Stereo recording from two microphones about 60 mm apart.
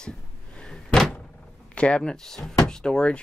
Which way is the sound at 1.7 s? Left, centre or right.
Centre.